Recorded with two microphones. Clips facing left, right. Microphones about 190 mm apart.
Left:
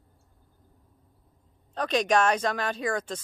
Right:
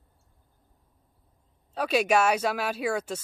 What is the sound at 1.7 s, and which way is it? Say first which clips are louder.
Speech: right 1 dB; 10° right (ahead or behind).